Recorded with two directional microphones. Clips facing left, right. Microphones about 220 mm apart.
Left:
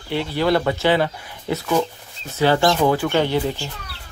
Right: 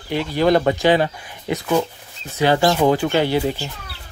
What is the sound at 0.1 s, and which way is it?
Speech, 15° right (ahead or behind).